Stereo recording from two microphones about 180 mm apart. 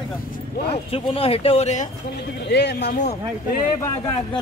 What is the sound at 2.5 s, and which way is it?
Speech, 65° left (ahead or behind).